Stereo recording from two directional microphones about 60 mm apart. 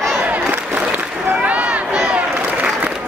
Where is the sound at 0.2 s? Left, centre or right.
Right.